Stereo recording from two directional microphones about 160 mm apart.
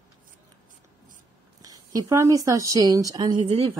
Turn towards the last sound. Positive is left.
turn(degrees=-35)  # may be behind; listen again after turning